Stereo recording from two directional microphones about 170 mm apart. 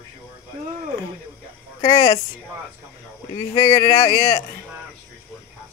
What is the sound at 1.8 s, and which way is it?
Speech, 20° left (ahead or behind).